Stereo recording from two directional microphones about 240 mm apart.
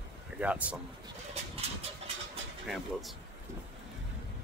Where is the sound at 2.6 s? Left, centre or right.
Centre.